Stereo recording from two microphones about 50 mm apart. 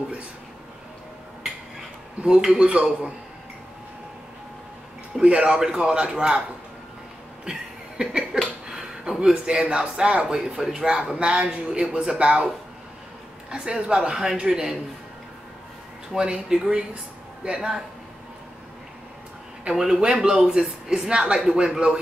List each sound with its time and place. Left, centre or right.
2.4 s a man's voice: centre
5.2 s a woman's voice: right
8.0 s a woman's voice: centre
8.6 s a sound: centre
9.8 s a man's voice: centre
13.5 s a woman's voice: centre
16.1 s a woman's voice: centre
19.6 s a woman's voice: centre